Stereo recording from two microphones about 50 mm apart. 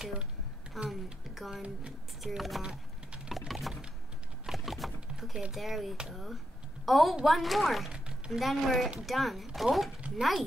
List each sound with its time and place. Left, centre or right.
0.0 s speech: centre
0.8 s a sound: centre
1.6 s speech: right
2.2 s speech: centre
3.3 s a sound: centre
5.5 s speech: centre